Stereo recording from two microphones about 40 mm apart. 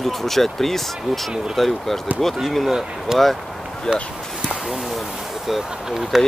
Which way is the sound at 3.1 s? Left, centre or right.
Centre.